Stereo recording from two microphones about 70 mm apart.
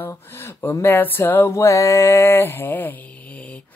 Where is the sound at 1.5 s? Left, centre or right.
Left.